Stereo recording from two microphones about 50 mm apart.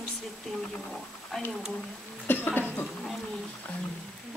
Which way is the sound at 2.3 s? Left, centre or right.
Left.